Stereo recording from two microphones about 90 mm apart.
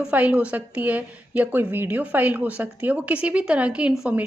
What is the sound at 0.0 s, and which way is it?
A woman's voice, 15° right (ahead or behind).